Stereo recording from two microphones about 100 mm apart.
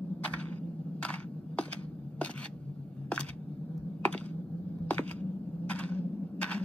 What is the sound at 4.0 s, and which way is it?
Computer keyboard, 15° left (ahead or behind).